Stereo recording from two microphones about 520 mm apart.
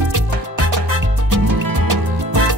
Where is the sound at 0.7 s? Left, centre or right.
Right.